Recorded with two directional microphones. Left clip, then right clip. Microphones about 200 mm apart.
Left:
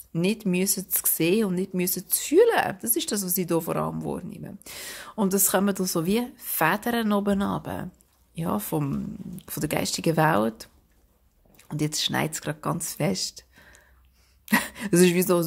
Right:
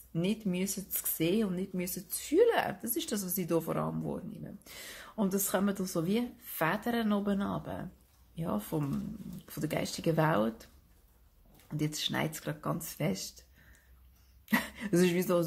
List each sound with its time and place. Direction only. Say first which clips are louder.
0.1 s speech: left 8 dB; 40° left (ahead or behind)